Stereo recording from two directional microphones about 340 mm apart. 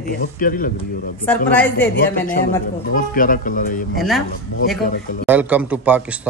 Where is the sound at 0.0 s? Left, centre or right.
Left.